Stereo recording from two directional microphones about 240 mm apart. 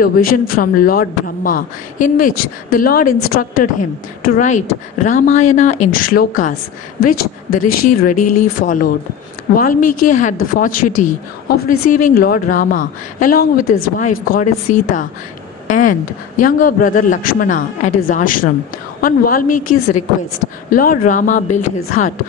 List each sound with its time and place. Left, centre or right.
0.0 s speech: left